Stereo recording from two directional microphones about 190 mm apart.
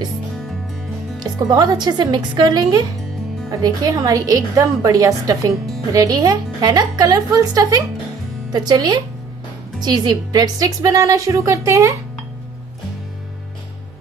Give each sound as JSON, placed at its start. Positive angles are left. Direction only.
{"t": 1.2, "sound": "a woman's voice", "side_deg": -20}